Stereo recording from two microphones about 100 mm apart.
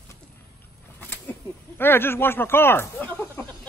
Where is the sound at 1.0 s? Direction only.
20° left (ahead or behind).